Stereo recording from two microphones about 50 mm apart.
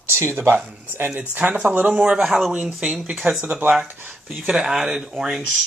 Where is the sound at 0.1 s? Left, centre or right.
Right.